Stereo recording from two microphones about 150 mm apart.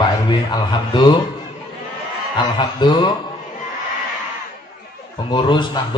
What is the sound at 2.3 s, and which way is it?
Speech, 30° left (ahead or behind).